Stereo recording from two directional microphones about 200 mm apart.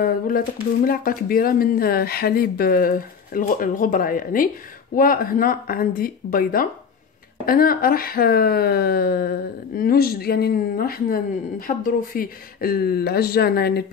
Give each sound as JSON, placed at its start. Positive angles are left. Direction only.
{"t": 0.8, "sound": "speech", "side_deg": 45}